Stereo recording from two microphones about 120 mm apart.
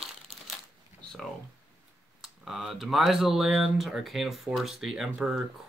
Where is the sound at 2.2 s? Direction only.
Centre (ahead or behind).